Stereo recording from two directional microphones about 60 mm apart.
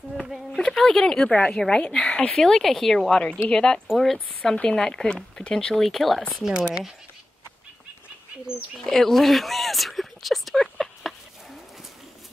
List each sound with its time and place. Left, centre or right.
0.2 s a sound: centre
0.6 s speech: centre
1.3 s a woman's voice: left
1.6 s a woman's voice: centre
2.3 s speech: centre
3.8 s speech: centre
4.5 s speech: centre
6.5 s speech: centre
8.8 s speech: centre